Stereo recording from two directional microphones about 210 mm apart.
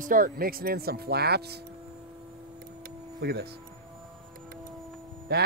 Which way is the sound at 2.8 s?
50° right (ahead or behind).